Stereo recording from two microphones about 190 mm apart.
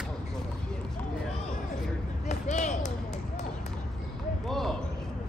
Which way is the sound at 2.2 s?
40° left (ahead or behind).